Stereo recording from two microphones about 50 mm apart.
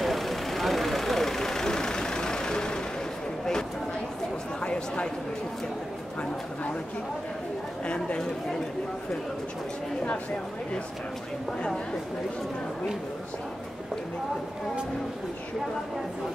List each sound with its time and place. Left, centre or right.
0.0 s vehicle: centre
4.6 s a sound: centre
7.8 s speech: left